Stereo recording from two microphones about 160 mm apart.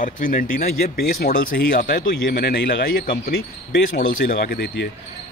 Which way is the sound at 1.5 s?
90° left.